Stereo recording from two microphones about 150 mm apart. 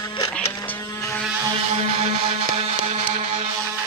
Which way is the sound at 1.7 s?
45° right (ahead or behind).